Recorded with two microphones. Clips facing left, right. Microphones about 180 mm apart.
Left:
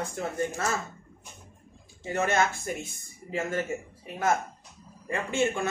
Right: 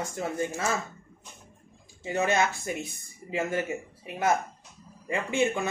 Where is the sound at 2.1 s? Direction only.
15° right (ahead or behind).